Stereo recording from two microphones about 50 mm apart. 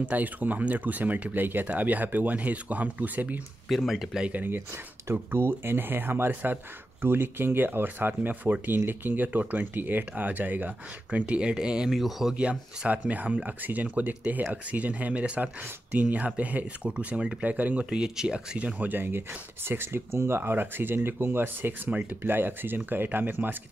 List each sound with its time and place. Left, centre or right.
0.0 s speech: right
3.6 s speech: centre
5.1 s speech: right
8.1 s speech: right
11.1 s speech: right; by 12.4 s centre
12.4 s speech: right
17.8 s speech: centre
18.8 s speech: right